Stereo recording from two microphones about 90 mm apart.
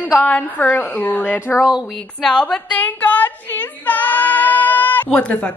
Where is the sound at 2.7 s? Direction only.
20° left (ahead or behind).